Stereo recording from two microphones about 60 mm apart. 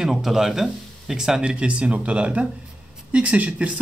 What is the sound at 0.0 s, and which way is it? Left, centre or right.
Speech, centre.